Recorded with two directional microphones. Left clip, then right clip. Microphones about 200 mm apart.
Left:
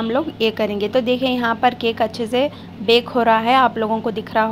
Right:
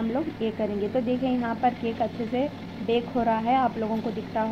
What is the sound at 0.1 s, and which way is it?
A woman's voice, 35° left (ahead or behind).